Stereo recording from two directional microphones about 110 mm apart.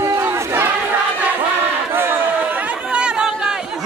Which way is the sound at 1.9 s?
20° right (ahead or behind).